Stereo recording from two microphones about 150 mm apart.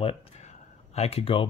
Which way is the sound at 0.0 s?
45° left (ahead or behind).